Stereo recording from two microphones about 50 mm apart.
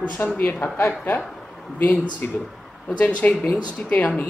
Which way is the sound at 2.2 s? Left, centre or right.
Left.